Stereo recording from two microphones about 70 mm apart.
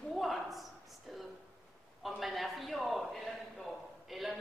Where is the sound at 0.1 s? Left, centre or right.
Centre.